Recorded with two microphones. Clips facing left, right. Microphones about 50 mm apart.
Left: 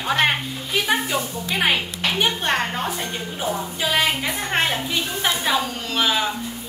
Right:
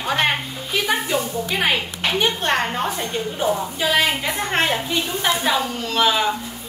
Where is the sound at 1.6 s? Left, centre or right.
Centre.